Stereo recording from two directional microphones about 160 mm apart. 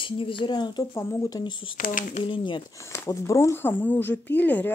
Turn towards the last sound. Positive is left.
turn(degrees=10)  # may be behind; listen again after turning